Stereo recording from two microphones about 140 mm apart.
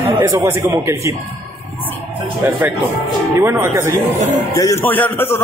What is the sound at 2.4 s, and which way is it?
Speech, 15° right (ahead or behind).